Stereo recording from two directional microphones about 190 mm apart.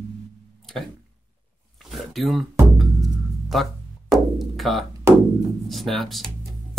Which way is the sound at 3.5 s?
Centre (ahead or behind).